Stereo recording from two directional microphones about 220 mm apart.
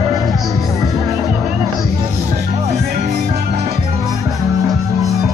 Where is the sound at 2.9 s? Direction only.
30° right (ahead or behind).